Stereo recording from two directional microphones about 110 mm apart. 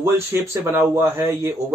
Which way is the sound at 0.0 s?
25° right (ahead or behind).